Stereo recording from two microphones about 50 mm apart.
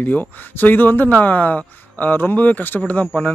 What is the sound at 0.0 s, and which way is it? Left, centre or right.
Speech, left.